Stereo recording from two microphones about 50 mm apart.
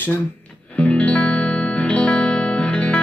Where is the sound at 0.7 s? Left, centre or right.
Left.